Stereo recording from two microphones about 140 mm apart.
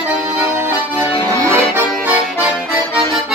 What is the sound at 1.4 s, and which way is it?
Accordion, 15° right (ahead or behind).